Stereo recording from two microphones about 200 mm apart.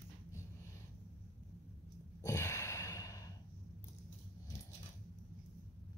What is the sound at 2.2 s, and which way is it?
Sigh, 15° left (ahead or behind).